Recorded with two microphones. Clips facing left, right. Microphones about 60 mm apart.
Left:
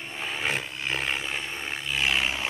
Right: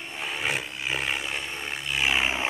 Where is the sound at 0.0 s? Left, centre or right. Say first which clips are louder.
Even; centre.